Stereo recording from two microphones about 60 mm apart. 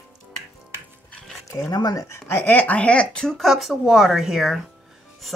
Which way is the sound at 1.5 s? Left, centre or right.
Left.